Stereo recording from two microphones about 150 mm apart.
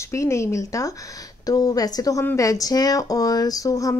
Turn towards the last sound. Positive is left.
turn(degrees=20)  # may be behind; listen again after turning